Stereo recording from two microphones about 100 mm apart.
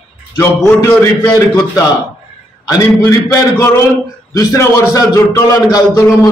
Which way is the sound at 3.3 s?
25° left (ahead or behind).